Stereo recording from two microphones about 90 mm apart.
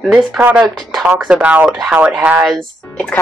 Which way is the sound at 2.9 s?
15° left (ahead or behind).